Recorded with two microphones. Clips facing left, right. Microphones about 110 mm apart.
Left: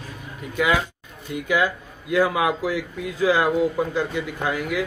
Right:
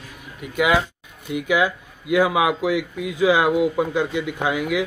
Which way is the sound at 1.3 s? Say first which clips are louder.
Right 2 dB; 10° right (ahead or behind).